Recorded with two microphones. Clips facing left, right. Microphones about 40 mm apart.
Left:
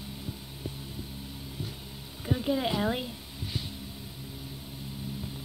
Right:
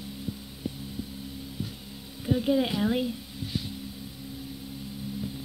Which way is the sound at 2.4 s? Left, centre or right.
Centre.